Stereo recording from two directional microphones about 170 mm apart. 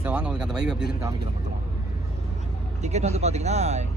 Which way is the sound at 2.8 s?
40° right (ahead or behind).